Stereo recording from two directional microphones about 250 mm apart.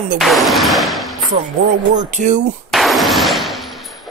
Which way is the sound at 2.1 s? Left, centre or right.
Right.